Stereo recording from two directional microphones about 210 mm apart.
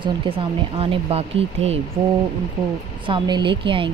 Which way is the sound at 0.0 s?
25° right (ahead or behind).